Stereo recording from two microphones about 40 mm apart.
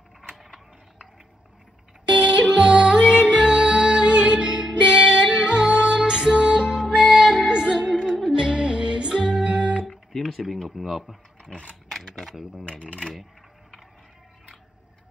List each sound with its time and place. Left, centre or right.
2.0 s music: right
9.8 s speech: centre
11.4 s speech: left
11.9 s camera: centre
13.1 s a sound: centre